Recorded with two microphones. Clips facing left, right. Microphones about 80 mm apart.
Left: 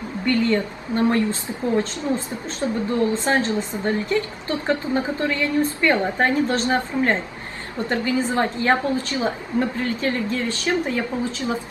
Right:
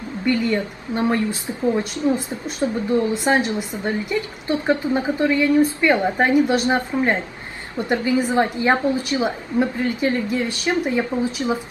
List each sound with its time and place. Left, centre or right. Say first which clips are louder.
0.3 s a woman's voice: even; centre